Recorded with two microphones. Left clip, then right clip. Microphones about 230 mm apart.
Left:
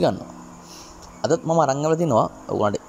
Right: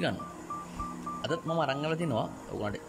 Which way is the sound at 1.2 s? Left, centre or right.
Centre.